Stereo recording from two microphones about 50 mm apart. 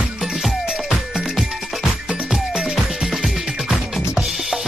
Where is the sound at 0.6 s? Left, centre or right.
Centre.